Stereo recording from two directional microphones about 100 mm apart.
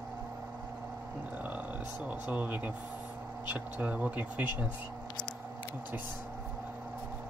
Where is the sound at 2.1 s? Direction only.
15° right (ahead or behind).